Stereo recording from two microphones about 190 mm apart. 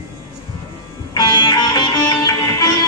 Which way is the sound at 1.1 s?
25° left (ahead or behind).